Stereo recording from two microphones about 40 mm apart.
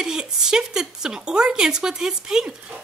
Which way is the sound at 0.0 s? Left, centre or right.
Centre.